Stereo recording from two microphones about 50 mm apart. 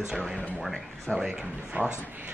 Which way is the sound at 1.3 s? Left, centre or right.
Centre.